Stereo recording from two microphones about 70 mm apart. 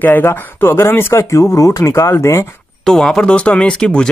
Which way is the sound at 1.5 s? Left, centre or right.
Left.